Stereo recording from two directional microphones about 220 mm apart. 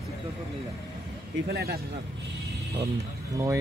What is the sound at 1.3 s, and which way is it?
Speech, 45° right (ahead or behind).